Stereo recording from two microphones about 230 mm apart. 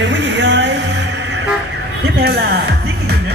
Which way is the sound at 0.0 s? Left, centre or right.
Right.